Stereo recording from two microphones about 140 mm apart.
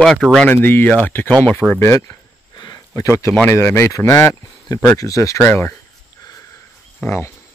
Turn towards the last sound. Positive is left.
turn(degrees=15)  # may be behind; listen again after turning